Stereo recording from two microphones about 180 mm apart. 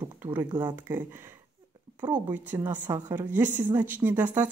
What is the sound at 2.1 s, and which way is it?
A woman's voice, 10° right (ahead or behind).